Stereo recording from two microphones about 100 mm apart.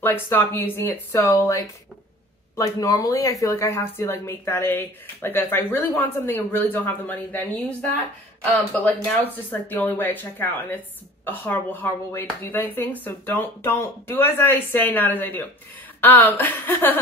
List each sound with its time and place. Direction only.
0.0 s a woman's voice: 20° left (ahead or behind)
8.7 s a woman's voice: 20° left (ahead or behind)